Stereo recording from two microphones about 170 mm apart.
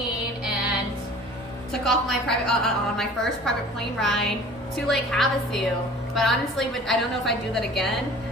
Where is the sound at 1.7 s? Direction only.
5° left (ahead or behind).